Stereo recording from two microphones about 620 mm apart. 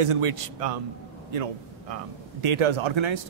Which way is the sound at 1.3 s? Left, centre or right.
Right.